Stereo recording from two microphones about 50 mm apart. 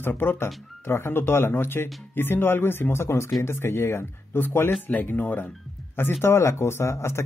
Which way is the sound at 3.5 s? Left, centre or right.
Left.